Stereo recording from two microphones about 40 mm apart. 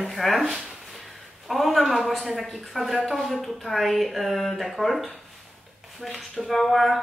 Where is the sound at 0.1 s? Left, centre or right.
Centre.